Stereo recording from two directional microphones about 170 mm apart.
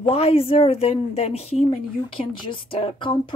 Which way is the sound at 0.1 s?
35° left (ahead or behind).